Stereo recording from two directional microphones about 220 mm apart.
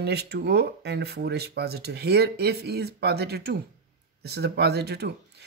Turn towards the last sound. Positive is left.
turn(degrees=-50)  # may be behind; listen again after turning